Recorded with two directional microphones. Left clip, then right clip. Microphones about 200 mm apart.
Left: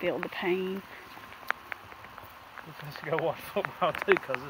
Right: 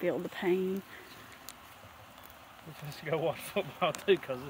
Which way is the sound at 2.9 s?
15° right (ahead or behind).